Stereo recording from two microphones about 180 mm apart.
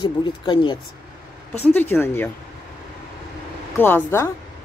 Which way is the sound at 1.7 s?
10° left (ahead or behind).